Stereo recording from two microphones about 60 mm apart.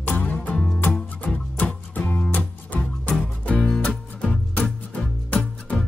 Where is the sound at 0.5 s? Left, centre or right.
Centre.